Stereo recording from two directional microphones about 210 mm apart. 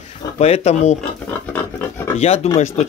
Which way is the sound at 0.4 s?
30° left (ahead or behind).